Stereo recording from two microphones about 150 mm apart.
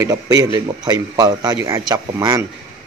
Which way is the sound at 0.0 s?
20° right (ahead or behind).